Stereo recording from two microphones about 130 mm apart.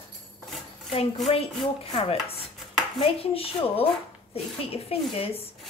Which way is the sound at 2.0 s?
50° left (ahead or behind).